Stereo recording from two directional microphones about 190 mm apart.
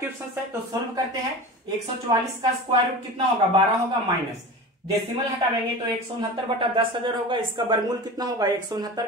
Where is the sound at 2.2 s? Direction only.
25° right (ahead or behind).